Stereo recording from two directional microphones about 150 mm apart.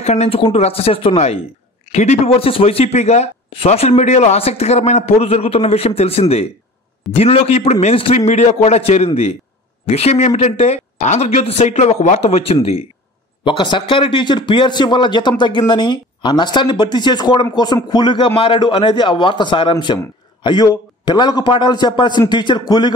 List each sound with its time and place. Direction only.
0.0 s a man's voice: 45° left (ahead or behind); by 22.9 s 30° left (ahead or behind)